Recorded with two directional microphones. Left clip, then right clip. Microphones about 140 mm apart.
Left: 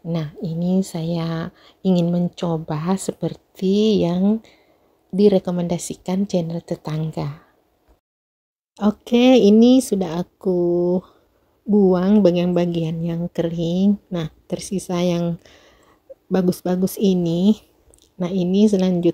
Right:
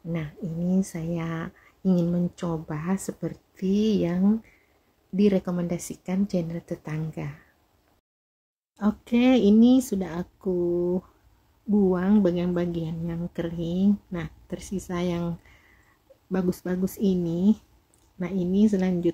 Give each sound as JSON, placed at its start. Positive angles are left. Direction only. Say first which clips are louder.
{"t": 0.1, "sound": "speech", "louder": "left 7 dB", "side_deg": 35}
{"t": 1.2, "sound": "speech", "louder": "left 6 dB", "side_deg": 15}
{"t": 8.7, "sound": "a woman's voice", "louder": "left 7 dB", "side_deg": 25}
{"t": 16.3, "sound": "a woman's voice", "louder": "left 8 dB", "side_deg": 20}